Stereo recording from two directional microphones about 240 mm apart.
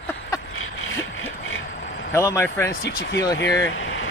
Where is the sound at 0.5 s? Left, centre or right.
Left.